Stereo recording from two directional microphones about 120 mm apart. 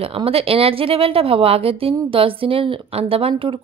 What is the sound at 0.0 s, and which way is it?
Speech, 55° right (ahead or behind).